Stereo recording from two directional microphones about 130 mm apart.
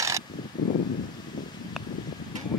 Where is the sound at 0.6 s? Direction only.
30° left (ahead or behind).